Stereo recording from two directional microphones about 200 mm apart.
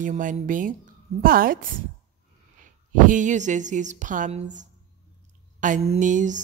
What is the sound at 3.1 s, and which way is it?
Speech, 40° right (ahead or behind).